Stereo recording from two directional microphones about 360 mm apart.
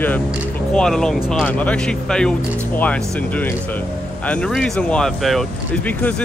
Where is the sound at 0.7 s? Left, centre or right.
Centre.